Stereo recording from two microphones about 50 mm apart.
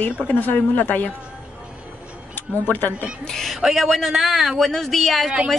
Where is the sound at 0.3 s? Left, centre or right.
Left.